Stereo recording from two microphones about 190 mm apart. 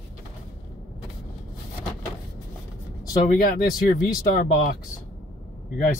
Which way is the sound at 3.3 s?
50° left (ahead or behind).